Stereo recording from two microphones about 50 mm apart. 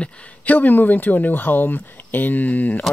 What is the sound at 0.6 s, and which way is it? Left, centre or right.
Speech, left.